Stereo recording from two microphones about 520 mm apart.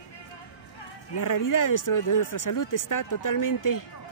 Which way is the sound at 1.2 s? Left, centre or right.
Left.